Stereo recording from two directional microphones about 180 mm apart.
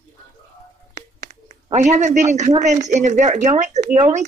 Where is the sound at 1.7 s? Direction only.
40° right (ahead or behind).